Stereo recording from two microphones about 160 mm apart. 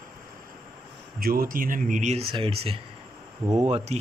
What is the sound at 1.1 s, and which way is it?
Speech, 65° right (ahead or behind).